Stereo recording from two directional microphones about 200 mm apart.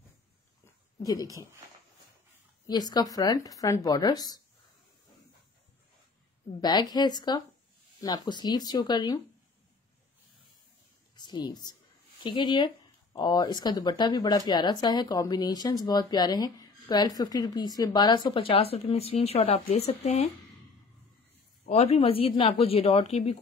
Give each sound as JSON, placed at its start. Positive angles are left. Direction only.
{"t": 1.0, "sound": "speech", "side_deg": 20}
{"t": 2.6, "sound": "speech", "side_deg": 20}
{"t": 6.6, "sound": "speech", "side_deg": 20}
{"t": 11.1, "sound": "speech", "side_deg": 20}
{"t": 21.6, "sound": "speech", "side_deg": 30}